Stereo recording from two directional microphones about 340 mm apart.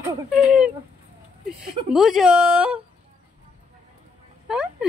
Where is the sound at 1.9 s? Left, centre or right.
Centre.